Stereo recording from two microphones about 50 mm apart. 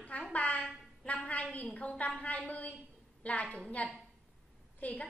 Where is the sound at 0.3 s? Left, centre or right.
Left.